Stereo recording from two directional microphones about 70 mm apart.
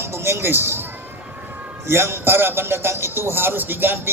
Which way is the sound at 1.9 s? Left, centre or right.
Right.